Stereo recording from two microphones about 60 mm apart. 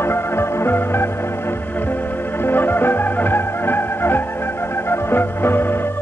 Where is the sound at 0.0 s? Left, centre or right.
Left.